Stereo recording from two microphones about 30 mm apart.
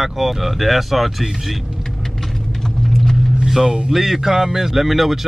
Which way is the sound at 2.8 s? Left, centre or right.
Centre.